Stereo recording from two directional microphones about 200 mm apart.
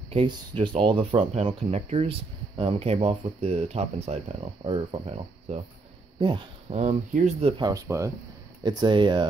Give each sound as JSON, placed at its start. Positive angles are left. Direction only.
{"t": 0.1, "sound": "speech", "side_deg": -30}